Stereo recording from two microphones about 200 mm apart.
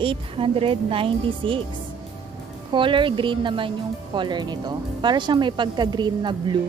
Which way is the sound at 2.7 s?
25° right (ahead or behind).